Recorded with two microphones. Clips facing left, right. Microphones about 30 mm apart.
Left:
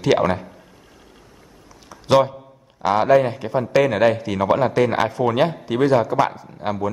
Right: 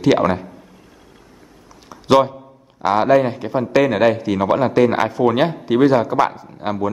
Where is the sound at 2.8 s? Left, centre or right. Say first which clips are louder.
Right 1 dB; centre.